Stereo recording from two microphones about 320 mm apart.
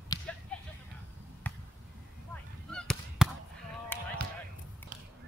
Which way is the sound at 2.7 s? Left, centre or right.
Centre.